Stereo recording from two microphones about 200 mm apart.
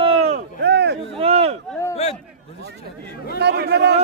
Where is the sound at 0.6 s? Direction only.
55° right (ahead or behind).